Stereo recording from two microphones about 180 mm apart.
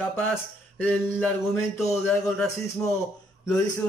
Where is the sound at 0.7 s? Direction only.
10° left (ahead or behind).